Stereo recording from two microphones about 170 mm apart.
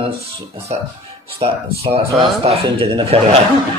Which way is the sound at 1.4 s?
35° right (ahead or behind).